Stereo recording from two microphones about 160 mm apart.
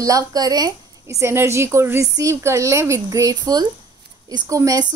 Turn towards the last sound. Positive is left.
turn(degrees=-20)  # may be behind; listen again after turning